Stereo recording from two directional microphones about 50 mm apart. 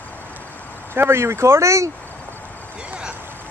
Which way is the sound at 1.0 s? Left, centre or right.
Right.